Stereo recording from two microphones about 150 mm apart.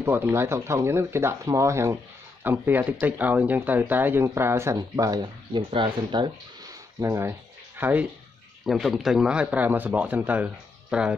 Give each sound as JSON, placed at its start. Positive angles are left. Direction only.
{"t": 0.0, "sound": "speech", "side_deg": -15}
{"t": 7.0, "sound": "speech", "side_deg": -20}
{"t": 8.6, "sound": "speech", "side_deg": 0}